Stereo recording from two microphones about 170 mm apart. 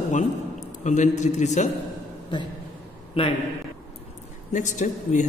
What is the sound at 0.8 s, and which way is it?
Speech, 45° left (ahead or behind).